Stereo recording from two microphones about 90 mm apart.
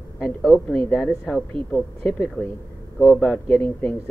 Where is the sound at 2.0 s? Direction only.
30° left (ahead or behind).